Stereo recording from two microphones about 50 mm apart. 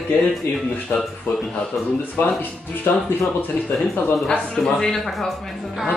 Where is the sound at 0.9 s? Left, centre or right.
Left.